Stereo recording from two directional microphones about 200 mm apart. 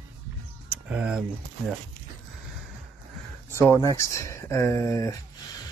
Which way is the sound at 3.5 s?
15° left (ahead or behind).